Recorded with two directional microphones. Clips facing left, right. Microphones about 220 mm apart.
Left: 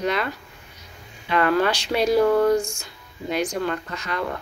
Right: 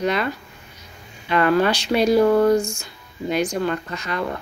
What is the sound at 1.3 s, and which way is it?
Speech, 20° right (ahead or behind).